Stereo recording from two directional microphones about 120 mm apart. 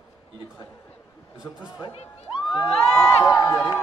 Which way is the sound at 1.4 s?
5° right (ahead or behind).